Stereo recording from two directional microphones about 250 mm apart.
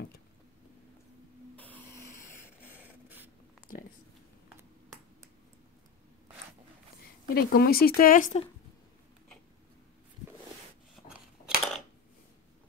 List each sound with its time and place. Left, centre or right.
1.6 s a sound: centre
2.7 s printer: centre
7.3 s speech: left
11.1 s scissors: centre